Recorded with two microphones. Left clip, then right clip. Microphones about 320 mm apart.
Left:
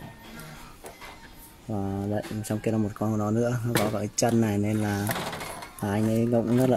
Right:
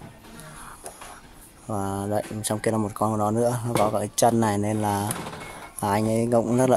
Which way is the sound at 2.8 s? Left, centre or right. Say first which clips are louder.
Right 5 dB; right.